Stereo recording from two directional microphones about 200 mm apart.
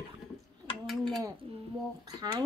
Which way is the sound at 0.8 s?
Centre (ahead or behind).